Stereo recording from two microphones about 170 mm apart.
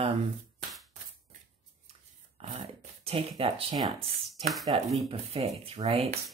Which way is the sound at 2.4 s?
35° right (ahead or behind).